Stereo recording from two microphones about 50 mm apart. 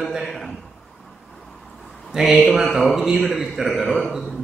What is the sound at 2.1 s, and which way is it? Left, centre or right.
A man's voice, centre.